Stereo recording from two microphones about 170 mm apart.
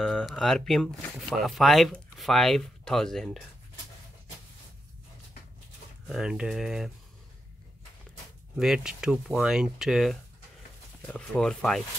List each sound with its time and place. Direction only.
0.0 s speech: 5° left (ahead or behind)
6.0 s speech: 5° right (ahead or behind)
8.5 s speech: 5° right (ahead or behind)
11.1 s speech: 5° left (ahead or behind)